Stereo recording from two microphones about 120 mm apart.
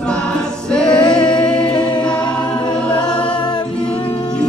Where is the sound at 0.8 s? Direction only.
40° left (ahead or behind).